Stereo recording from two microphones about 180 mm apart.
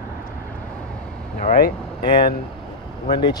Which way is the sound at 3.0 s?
25° left (ahead or behind).